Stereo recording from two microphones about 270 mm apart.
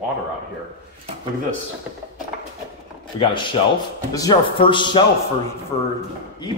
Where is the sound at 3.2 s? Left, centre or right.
Centre.